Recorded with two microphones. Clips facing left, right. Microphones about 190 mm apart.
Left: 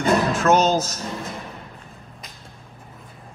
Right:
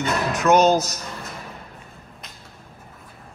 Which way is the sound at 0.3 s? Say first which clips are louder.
Right 1 dB; 15° right (ahead or behind).